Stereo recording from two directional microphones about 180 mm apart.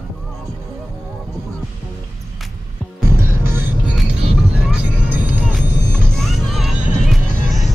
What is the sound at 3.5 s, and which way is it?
Music, 10° right (ahead or behind).